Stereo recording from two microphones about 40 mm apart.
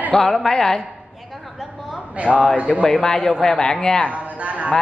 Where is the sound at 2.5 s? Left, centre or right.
Right.